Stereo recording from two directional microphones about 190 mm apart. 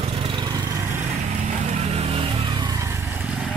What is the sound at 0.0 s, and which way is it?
Lawn mower, 25° right (ahead or behind).